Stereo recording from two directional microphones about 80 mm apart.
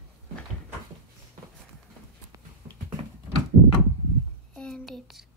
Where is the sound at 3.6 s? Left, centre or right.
Right.